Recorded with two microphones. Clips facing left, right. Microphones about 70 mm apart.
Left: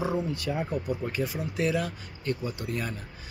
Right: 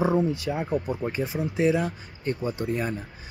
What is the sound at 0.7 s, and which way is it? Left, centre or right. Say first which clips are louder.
Speech: right 3 dB; right.